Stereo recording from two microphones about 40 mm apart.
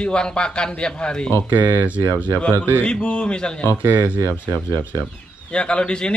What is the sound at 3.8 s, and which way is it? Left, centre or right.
Speech, right.